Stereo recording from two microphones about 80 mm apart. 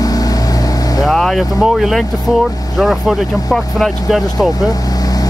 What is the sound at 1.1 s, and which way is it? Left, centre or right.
Vehicle, centre.